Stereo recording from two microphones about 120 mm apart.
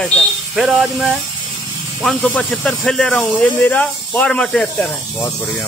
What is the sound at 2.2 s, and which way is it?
Speech, 10° left (ahead or behind).